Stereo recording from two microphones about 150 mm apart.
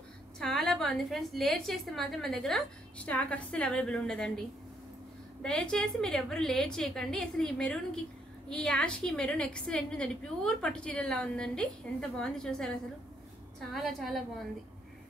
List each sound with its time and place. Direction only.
0.4 s a woman's voice: 5° left (ahead or behind)
5.4 s a woman's voice: 5° left (ahead or behind)